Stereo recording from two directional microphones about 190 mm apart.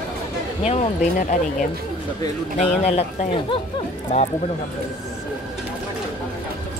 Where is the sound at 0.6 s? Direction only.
35° left (ahead or behind).